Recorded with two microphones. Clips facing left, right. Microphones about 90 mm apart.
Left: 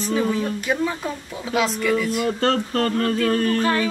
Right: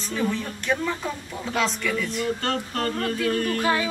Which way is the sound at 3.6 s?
15° right (ahead or behind).